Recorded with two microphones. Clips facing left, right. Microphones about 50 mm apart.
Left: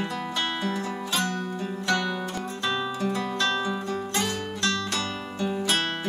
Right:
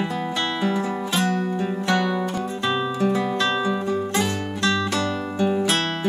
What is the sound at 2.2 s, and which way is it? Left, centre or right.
Music, centre.